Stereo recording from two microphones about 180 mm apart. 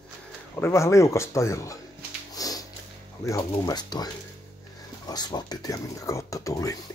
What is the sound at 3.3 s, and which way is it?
Speech, 20° left (ahead or behind).